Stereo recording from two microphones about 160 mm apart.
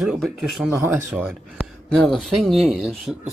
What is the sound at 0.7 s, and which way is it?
Speech, 15° right (ahead or behind).